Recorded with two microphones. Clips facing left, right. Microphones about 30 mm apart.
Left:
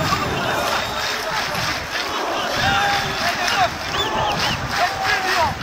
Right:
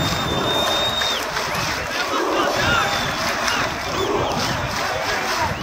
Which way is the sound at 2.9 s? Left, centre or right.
Centre.